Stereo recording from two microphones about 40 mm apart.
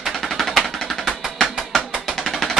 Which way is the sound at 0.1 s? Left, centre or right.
Centre.